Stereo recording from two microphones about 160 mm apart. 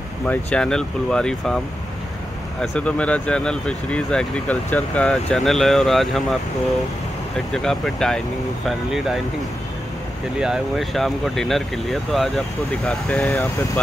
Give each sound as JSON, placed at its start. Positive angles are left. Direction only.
{"t": 0.3, "sound": "speech", "side_deg": 5}
{"t": 2.6, "sound": "speech", "side_deg": 5}
{"t": 7.3, "sound": "speech", "side_deg": 5}
{"t": 10.4, "sound": "speech", "side_deg": 0}